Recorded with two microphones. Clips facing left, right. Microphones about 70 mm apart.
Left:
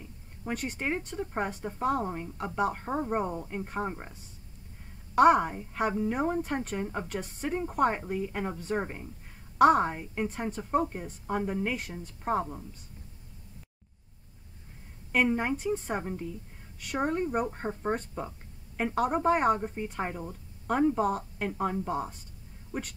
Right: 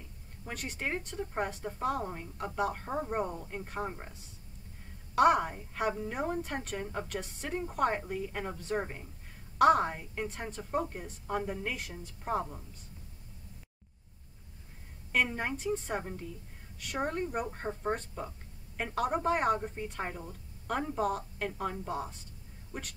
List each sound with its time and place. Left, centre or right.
0.7 s speech: centre
5.1 s a woman's voice: centre
6.8 s speech: centre
7.1 s a woman's voice: centre
7.4 s speech: centre
9.6 s speech: centre
11.9 s a woman's voice: left
15.1 s a woman's voice: centre
16.0 s a woman's voice: centre